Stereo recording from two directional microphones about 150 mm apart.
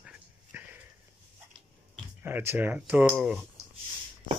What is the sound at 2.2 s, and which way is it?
Speech, 15° right (ahead or behind).